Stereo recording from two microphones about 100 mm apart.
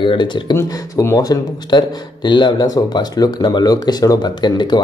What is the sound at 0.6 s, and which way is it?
Speech, 35° left (ahead or behind).